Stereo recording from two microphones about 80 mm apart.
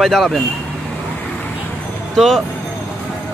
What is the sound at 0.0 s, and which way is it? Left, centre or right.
Speech, centre.